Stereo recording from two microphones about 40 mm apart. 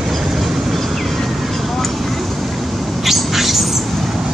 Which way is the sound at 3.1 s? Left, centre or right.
Centre.